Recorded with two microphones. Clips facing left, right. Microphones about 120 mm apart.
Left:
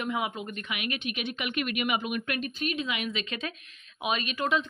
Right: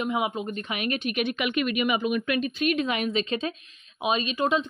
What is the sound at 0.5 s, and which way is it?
Speech, 35° right (ahead or behind).